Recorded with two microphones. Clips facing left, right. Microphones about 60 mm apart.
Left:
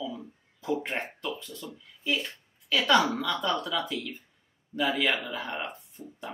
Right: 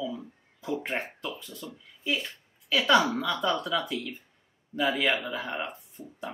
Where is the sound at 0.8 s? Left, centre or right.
Centre.